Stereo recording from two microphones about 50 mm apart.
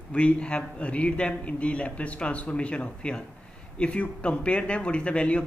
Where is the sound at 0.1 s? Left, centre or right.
Left.